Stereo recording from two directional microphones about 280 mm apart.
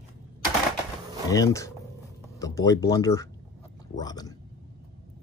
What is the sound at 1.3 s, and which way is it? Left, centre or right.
Speech, centre.